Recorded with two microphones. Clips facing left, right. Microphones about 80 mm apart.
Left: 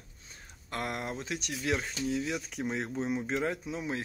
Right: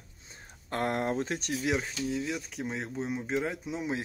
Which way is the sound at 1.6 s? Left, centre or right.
Centre.